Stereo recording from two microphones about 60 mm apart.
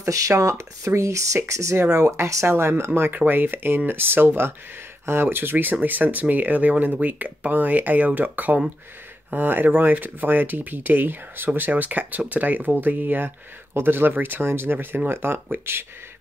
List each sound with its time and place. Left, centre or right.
0.0 s speech: right
0.3 s speech: right
2.4 s speech: right